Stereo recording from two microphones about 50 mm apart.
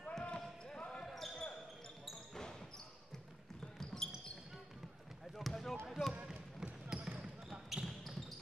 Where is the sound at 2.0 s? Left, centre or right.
Centre.